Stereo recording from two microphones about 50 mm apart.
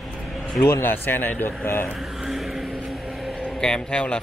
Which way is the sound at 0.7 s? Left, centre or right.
Left.